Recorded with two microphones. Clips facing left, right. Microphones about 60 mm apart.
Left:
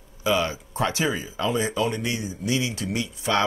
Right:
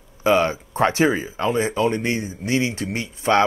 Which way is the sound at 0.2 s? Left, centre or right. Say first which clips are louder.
Right 6 dB; right.